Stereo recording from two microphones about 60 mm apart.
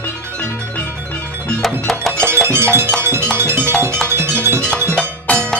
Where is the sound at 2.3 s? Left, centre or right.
Right.